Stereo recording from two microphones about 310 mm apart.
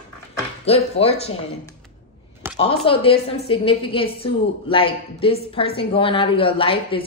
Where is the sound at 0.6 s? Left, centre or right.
Centre.